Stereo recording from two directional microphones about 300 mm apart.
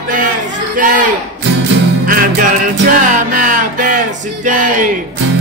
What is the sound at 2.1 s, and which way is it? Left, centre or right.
Music, right.